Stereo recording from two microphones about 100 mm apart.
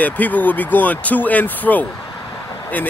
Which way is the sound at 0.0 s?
15° left (ahead or behind).